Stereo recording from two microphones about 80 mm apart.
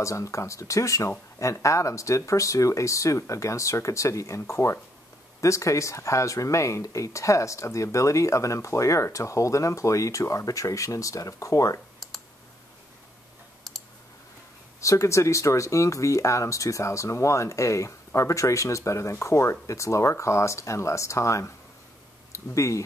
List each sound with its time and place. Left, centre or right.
0.0 s speech: left
13.7 s clicking: centre
14.8 s speech: left